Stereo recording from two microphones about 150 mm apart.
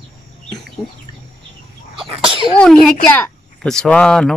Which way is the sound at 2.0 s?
35° right (ahead or behind).